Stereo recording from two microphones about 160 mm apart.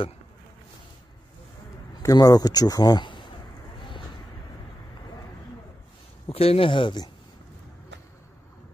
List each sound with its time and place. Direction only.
2.0 s speech: 20° left (ahead or behind)
6.2 s speech: 40° left (ahead or behind)